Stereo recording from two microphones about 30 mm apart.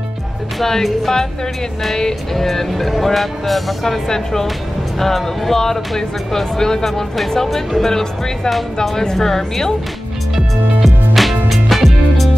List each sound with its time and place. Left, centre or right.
0.6 s speech: centre
2.7 s speech: centre
4.1 s speech: centre
10.3 s music: centre